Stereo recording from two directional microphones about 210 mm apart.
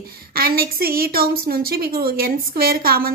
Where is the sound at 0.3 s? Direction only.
45° right (ahead or behind).